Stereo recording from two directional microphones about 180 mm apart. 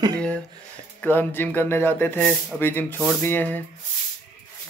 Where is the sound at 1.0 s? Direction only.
10° left (ahead or behind).